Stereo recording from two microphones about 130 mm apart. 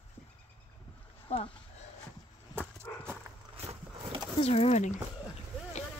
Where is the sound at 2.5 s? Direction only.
15° right (ahead or behind).